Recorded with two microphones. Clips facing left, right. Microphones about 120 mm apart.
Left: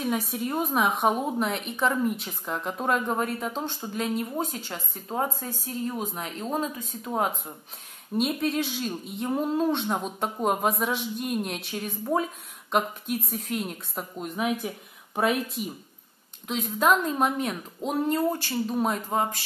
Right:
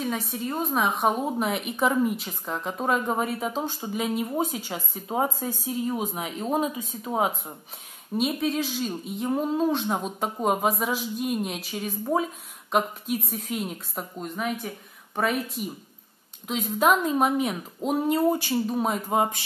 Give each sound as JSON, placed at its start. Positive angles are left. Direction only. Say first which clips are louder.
{"t": 0.0, "sound": "a woman's voice", "louder": "left 1 dB", "side_deg": 5}
{"t": 18.7, "sound": "a woman's voice", "louder": "even", "side_deg": 0}
{"t": 19.0, "sound": "speech", "louder": "right 3 dB", "side_deg": -15}